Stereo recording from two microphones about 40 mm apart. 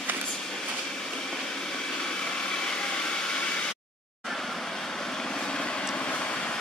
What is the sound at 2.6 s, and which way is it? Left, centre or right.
Vacuum cleaner, left.